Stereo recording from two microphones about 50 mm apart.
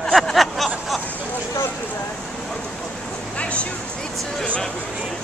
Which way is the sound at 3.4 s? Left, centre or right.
Left.